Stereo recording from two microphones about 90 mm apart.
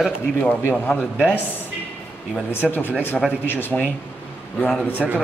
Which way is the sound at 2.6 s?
20° left (ahead or behind).